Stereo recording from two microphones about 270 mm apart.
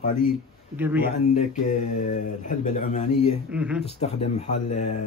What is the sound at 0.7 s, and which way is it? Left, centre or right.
Speech, centre.